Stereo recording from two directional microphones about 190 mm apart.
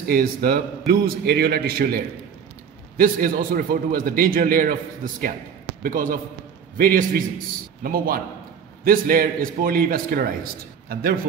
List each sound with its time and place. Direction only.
0.1 s a man's voice: 50° right (ahead or behind)